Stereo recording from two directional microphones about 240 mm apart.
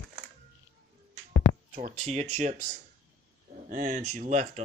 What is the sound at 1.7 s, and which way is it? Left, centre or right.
Speech, right.